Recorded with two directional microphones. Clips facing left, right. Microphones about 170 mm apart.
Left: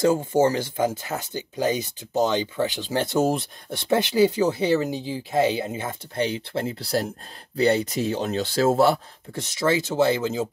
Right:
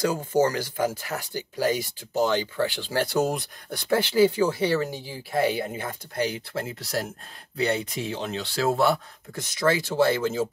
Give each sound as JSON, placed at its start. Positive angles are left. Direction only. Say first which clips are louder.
{"t": 0.0, "sound": "speech", "louder": "left 3 dB", "side_deg": 25}